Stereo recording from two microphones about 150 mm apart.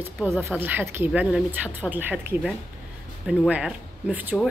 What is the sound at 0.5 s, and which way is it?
Speech, 15° right (ahead or behind).